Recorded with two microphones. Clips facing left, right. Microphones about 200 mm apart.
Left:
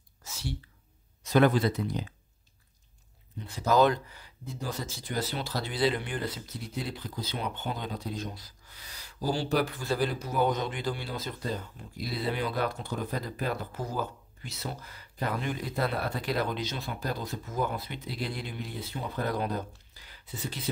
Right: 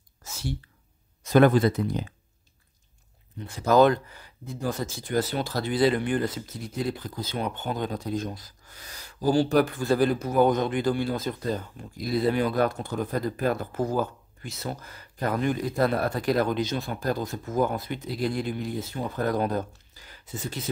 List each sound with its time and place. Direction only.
0.2 s whispering: 50° right (ahead or behind)
1.2 s speech: 50° right (ahead or behind)
3.7 s speech: 55° right (ahead or behind)